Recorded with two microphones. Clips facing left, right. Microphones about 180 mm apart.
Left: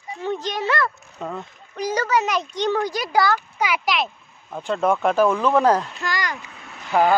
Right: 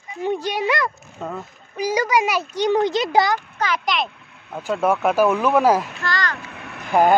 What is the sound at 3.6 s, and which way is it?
Speech, 5° left (ahead or behind).